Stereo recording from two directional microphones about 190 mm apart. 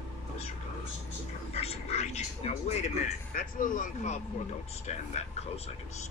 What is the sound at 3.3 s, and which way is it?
Speech, 45° left (ahead or behind).